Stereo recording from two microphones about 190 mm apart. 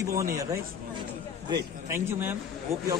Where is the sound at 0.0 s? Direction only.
15° right (ahead or behind).